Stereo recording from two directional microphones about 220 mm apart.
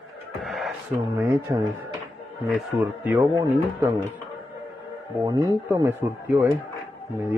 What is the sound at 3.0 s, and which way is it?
Speech, 10° right (ahead or behind).